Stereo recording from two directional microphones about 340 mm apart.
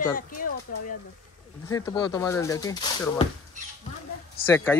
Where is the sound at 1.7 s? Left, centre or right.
Centre.